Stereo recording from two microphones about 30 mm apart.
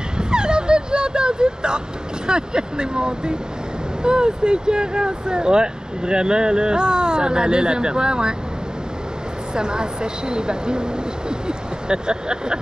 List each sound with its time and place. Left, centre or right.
0.2 s a sound: right
2.2 s speech: right
9.6 s speech: right